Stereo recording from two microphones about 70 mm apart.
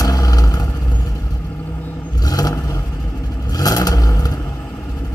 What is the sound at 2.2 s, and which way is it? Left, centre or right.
Vehicle, left.